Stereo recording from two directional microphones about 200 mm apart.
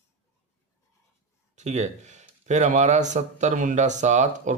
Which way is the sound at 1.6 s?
35° right (ahead or behind).